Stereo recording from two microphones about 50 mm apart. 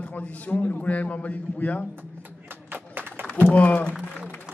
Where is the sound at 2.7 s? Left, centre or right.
Right.